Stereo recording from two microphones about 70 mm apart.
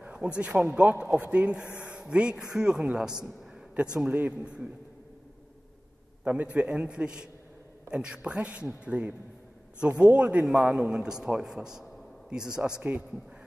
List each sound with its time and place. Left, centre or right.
0.0 s a man's voice: centre
6.2 s a man's voice: centre
10.4 s a man's voice: centre